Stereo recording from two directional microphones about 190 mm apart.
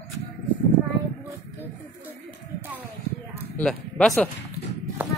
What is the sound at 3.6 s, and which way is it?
Speech, 5° left (ahead or behind).